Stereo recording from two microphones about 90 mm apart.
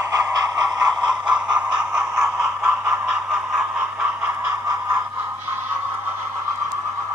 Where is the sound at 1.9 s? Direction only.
30° right (ahead or behind).